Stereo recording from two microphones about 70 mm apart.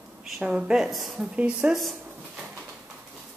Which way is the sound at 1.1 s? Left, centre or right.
Centre.